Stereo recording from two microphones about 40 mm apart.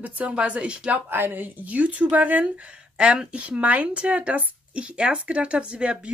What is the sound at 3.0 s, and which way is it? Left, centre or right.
Speech, right.